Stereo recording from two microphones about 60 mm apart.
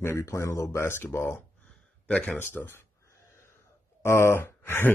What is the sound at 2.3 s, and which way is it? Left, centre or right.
Speech, left.